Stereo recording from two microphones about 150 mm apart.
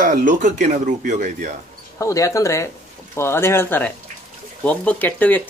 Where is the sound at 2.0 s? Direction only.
20° left (ahead or behind).